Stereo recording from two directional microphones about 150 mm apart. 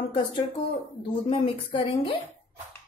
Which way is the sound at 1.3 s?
35° left (ahead or behind).